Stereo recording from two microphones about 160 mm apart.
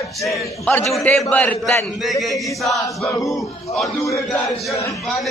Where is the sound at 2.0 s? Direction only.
Centre (ahead or behind).